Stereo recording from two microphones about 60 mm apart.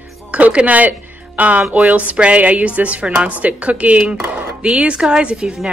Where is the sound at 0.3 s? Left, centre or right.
Right.